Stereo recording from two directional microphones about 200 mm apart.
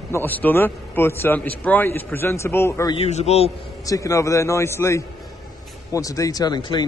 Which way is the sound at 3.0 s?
35° left (ahead or behind).